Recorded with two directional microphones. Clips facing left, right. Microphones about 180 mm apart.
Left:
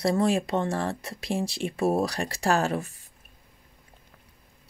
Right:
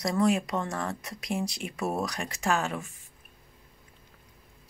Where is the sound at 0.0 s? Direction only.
30° left (ahead or behind).